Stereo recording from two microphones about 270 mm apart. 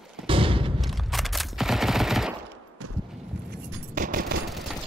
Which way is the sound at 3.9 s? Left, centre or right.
Right.